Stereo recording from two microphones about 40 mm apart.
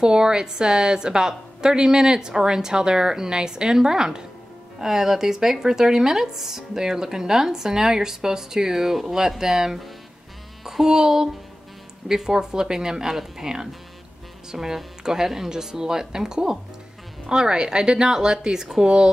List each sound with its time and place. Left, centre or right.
0.0 s speech: right